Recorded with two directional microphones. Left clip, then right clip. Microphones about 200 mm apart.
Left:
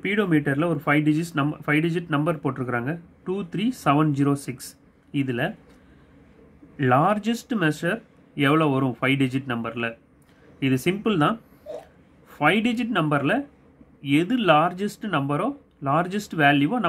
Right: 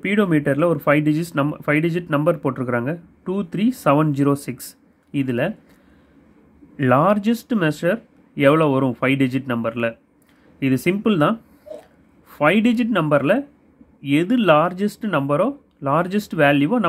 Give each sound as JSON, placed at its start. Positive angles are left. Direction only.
{"t": 0.0, "sound": "speech", "side_deg": -30}
{"t": 6.8, "sound": "speech", "side_deg": -30}